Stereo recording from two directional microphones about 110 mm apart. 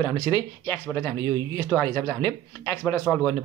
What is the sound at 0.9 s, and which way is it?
Speech, 30° left (ahead or behind).